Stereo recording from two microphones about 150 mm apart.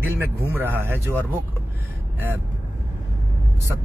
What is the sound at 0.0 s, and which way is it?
Speech, 15° right (ahead or behind).